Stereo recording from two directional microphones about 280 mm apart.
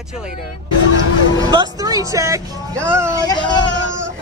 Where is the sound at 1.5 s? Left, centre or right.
Centre.